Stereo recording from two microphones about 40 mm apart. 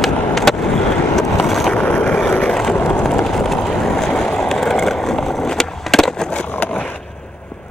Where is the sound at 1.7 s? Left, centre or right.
Left.